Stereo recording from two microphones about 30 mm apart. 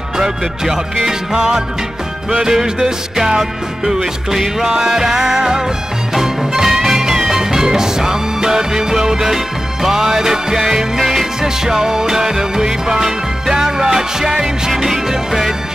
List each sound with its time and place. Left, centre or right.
1.0 s music: centre
11.4 s music: centre